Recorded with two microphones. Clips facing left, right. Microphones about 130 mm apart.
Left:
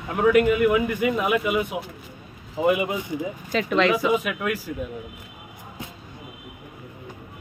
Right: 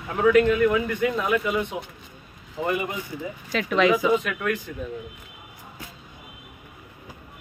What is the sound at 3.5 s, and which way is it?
Speech, centre (ahead or behind).